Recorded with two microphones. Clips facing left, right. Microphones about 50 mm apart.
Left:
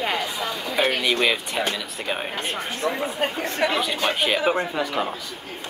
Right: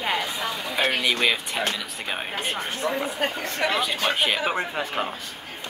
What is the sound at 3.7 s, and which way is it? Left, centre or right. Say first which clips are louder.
Speech: left 1 dB; centre.